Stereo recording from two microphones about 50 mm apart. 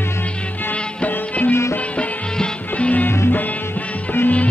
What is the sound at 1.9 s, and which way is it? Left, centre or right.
Music, left.